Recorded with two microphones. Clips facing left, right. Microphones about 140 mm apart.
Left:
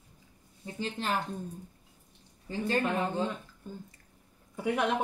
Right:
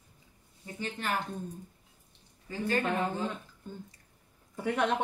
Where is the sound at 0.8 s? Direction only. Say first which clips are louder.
Left 2 dB; 30° left (ahead or behind).